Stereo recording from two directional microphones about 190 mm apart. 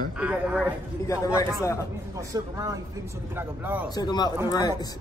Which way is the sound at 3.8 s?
20° left (ahead or behind).